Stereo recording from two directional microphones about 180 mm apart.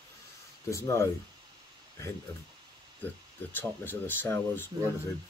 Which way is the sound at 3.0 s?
10° left (ahead or behind).